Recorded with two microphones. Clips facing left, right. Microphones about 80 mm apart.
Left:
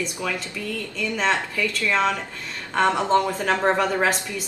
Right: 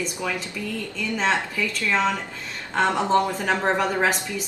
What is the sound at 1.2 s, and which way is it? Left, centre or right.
Speech, centre.